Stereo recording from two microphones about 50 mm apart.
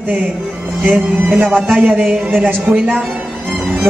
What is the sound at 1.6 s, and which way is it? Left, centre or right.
Speech, right.